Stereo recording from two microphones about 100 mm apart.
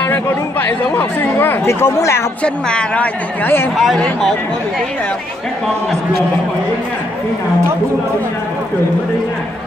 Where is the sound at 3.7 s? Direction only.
Centre (ahead or behind).